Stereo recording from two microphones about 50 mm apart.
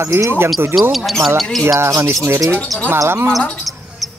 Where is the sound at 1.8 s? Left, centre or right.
Right.